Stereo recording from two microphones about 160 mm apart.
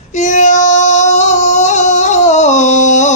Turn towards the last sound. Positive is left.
turn(degrees=50)  # may be behind; listen again after turning